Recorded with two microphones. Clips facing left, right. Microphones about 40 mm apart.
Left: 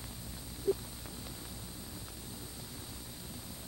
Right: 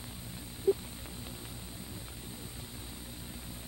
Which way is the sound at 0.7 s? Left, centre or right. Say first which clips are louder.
Right 4 dB; right.